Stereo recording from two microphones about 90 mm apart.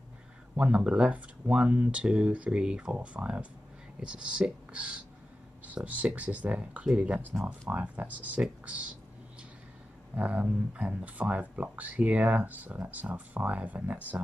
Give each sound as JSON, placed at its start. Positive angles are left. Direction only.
{"t": 0.6, "sound": "speech", "side_deg": -10}
{"t": 10.1, "sound": "speech", "side_deg": -15}